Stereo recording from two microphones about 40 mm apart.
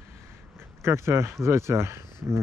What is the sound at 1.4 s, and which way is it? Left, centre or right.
Speech, right.